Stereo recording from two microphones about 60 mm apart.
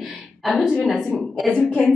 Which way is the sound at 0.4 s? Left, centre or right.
Centre.